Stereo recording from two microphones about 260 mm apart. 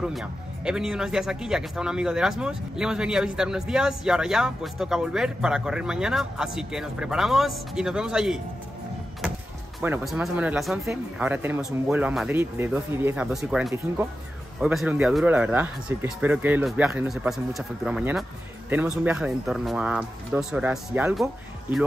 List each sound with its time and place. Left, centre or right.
0.0 s speech: centre
9.8 s speech: centre